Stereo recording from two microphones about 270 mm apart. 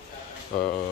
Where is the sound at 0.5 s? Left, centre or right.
Left.